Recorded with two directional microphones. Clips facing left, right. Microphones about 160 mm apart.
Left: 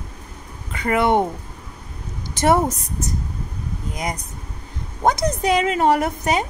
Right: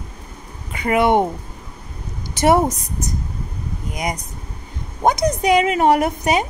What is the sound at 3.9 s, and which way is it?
Speech, 15° right (ahead or behind).